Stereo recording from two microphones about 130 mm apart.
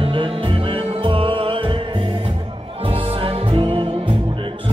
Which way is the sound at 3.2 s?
45° right (ahead or behind).